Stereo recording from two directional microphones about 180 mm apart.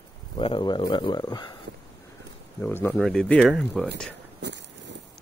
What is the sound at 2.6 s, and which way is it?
Speech, 10° left (ahead or behind).